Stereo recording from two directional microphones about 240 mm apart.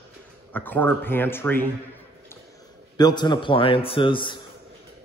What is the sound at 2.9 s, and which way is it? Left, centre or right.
A man's voice, centre.